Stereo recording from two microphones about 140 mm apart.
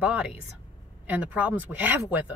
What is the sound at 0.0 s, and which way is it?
Speech, 5° right (ahead or behind).